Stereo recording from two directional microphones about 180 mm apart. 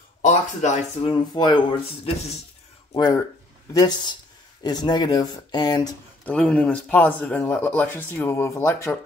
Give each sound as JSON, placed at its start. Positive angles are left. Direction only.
{"t": 0.2, "sound": "speech", "side_deg": 45}
{"t": 1.1, "sound": "speech", "side_deg": 25}
{"t": 6.2, "sound": "a man's voice", "side_deg": 5}